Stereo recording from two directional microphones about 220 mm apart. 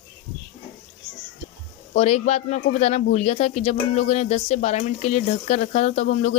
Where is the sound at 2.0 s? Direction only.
30° left (ahead or behind).